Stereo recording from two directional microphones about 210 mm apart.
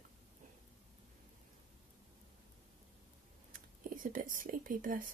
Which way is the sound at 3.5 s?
40° right (ahead or behind).